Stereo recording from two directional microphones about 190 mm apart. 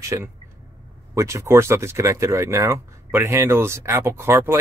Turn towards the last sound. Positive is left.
turn(degrees=-15)  # may be behind; listen again after turning